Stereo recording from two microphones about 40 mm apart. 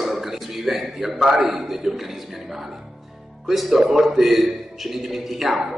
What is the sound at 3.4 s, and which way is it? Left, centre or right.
A man's voice, centre.